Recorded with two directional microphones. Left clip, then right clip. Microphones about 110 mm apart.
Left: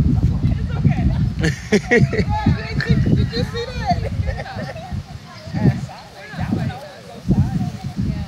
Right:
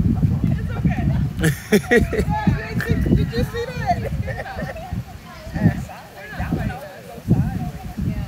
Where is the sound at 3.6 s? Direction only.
35° right (ahead or behind).